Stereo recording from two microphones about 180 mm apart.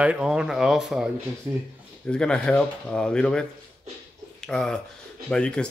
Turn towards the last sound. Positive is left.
turn(degrees=5)  # may be behind; listen again after turning